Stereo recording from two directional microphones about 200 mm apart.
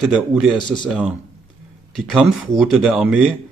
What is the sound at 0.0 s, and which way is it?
Speech, 5° right (ahead or behind).